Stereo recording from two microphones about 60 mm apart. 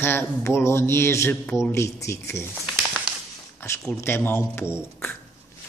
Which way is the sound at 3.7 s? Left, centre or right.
Left.